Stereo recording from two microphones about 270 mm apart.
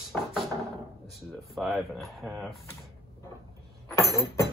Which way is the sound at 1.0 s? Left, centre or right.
Centre.